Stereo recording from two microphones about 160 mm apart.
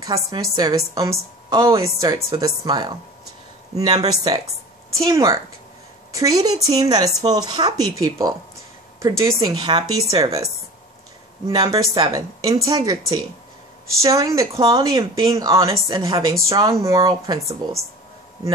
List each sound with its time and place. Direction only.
0.0 s a woman's voice: 20° right (ahead or behind)